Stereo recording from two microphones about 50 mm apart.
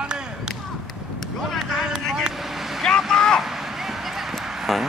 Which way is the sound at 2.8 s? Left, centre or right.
Centre.